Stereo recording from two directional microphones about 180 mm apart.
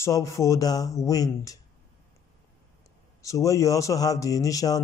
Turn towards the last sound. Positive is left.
turn(degrees=20)  # may be behind; listen again after turning